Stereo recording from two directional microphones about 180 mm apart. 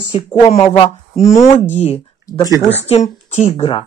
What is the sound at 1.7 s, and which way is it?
Speech, 35° left (ahead or behind).